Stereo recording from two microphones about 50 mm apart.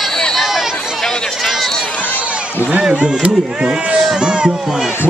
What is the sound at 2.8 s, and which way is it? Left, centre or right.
Speech, right.